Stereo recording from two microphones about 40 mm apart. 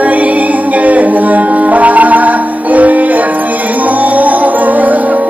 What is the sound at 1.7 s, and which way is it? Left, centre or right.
Music, right.